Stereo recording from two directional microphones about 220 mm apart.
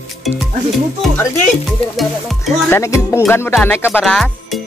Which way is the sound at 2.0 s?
Centre (ahead or behind).